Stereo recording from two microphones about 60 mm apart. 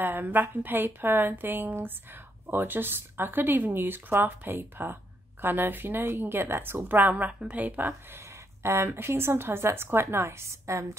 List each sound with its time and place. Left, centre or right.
0.0 s speech: right
8.6 s speech: right